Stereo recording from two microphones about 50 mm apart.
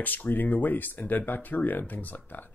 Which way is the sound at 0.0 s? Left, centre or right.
Left.